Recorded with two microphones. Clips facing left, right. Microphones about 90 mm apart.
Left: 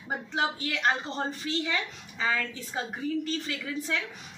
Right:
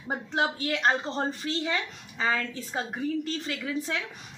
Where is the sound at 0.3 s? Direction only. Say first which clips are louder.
Right 3 dB; 40° right (ahead or behind).